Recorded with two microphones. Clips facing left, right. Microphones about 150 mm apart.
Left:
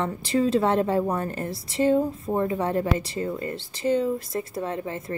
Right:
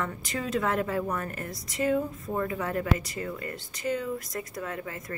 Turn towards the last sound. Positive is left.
turn(degrees=30)  # may be behind; listen again after turning